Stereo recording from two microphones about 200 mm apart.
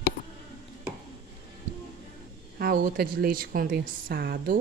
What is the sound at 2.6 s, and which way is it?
Speech, 45° right (ahead or behind).